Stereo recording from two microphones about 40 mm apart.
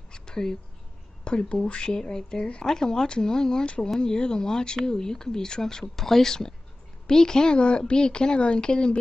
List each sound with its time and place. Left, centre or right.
0.1 s a sound: centre
1.2 s speech: left
1.9 s speech: centre
3.6 s speech: left
4.0 s speech: centre